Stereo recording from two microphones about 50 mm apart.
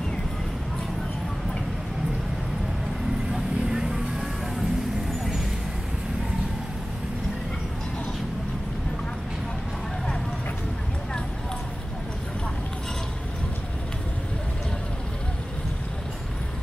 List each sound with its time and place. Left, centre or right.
3.3 s vehicle: centre